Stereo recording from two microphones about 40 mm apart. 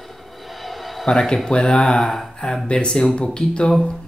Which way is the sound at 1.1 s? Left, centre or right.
Centre.